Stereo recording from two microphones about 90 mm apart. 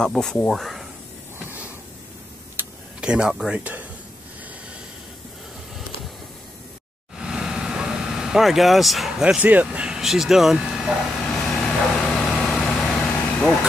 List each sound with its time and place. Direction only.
0.0 s speech: 5° left (ahead or behind)
2.6 s tick-tock: 25° right (ahead or behind)
3.0 s speech: 10° right (ahead or behind)
7.2 s vehicle: 5° right (ahead or behind)
9.2 s speech: 15° right (ahead or behind)
11.2 s vehicle: 5° left (ahead or behind)
13.1 s vehicle: 20° left (ahead or behind)